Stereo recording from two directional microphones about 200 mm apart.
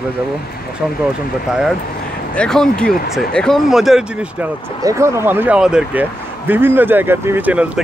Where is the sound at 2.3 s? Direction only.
5° left (ahead or behind).